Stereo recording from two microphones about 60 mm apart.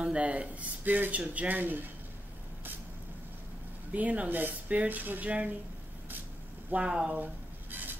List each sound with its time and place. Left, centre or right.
0.0 s speech: centre
3.9 s speech: right
6.9 s speech: centre